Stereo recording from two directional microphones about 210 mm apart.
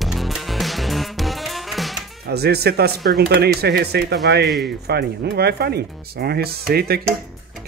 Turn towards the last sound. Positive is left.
turn(degrees=-45)  # may be behind; listen again after turning